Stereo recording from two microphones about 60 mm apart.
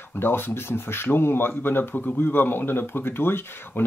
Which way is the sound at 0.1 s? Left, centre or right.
Left.